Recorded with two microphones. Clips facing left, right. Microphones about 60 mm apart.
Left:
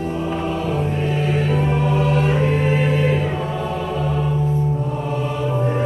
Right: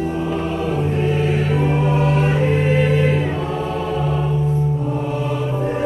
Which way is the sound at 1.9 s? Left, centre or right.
Right.